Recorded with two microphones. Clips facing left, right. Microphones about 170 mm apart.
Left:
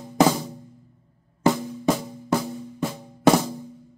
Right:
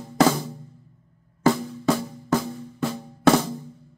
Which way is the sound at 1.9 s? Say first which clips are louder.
Right 1 dB; 15° left (ahead or behind).